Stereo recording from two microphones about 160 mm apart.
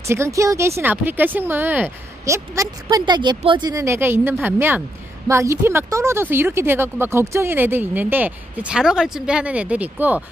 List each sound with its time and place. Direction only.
0.0 s speech: 15° right (ahead or behind)